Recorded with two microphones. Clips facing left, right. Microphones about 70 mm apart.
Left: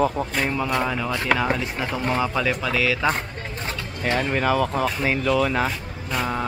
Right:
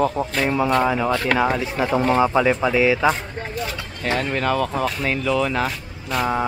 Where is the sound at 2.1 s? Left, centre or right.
Right.